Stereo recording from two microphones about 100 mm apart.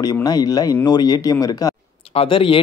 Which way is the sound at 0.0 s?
40° left (ahead or behind).